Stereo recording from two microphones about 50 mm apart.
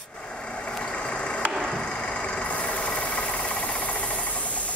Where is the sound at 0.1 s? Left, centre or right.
Left.